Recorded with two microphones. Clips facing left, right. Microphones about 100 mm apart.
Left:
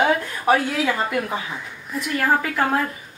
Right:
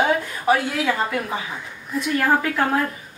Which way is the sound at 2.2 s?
Centre (ahead or behind).